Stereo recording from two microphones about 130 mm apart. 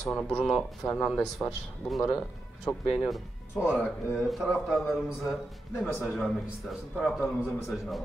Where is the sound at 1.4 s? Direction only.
20° left (ahead or behind).